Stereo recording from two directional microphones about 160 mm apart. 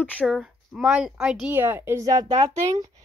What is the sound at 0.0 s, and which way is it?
Speech, 10° left (ahead or behind).